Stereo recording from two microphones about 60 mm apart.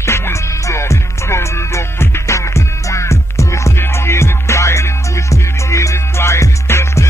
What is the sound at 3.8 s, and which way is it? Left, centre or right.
Music, left.